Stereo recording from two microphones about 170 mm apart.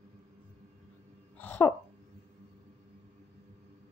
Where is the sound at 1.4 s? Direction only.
10° left (ahead or behind).